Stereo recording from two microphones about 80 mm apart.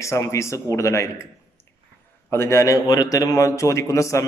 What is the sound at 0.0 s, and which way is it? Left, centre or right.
A man's voice, left.